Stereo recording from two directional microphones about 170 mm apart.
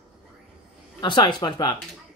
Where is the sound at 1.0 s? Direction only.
30° left (ahead or behind).